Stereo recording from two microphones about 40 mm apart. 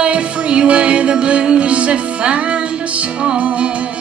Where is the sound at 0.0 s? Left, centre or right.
Right.